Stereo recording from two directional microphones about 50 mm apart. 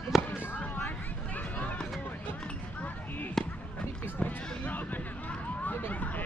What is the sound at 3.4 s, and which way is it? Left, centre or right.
Speech, centre.